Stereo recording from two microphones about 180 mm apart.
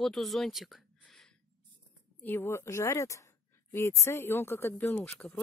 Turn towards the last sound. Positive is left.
turn(degrees=10)  # may be behind; listen again after turning